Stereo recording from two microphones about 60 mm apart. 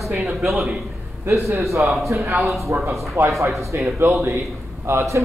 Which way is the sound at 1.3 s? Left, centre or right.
Right.